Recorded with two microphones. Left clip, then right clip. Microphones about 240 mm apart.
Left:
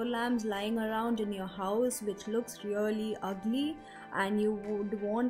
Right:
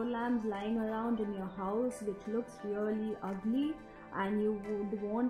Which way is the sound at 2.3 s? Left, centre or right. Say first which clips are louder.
Left 5 dB; centre.